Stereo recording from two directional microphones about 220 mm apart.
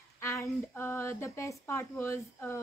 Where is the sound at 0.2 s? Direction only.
10° left (ahead or behind).